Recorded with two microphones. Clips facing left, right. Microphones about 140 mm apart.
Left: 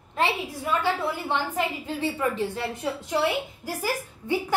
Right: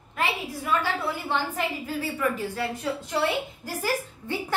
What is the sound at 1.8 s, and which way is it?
Speech, 25° left (ahead or behind).